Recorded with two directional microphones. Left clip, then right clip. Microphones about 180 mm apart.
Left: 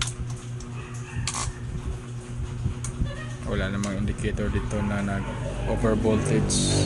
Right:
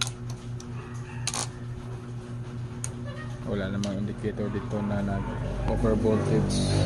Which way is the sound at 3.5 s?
5° right (ahead or behind).